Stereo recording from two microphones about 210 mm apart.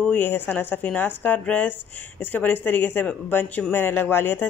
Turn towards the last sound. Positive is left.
turn(degrees=10)  # may be behind; listen again after turning